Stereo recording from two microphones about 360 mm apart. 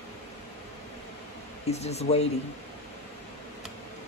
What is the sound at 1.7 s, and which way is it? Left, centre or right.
Speech, centre.